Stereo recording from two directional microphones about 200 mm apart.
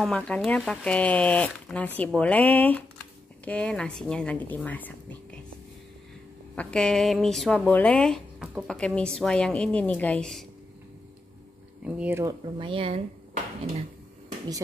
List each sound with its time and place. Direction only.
0.0 s speech: 5° left (ahead or behind)
6.5 s speech: 5° left (ahead or behind)
11.8 s speech: 10° right (ahead or behind)
12.5 s speech: 25° right (ahead or behind)